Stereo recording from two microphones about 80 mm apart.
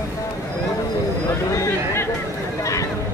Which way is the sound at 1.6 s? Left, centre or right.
Left.